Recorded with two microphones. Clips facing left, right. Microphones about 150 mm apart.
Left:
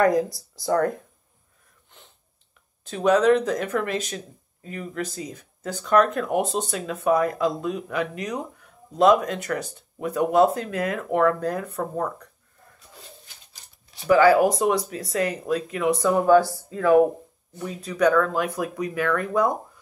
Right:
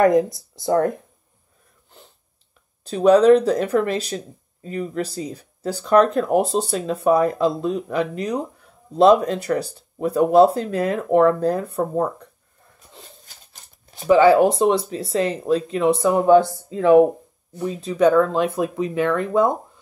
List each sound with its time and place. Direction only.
0.0 s speech: 25° right (ahead or behind)
2.8 s speech: 35° right (ahead or behind)
13.5 s a sound: 50° right (ahead or behind)
14.0 s speech: 25° right (ahead or behind)